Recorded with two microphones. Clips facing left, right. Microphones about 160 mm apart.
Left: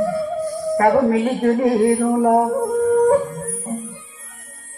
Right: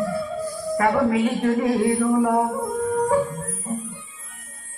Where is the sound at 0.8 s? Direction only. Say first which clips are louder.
Left 4 dB; 30° left (ahead or behind).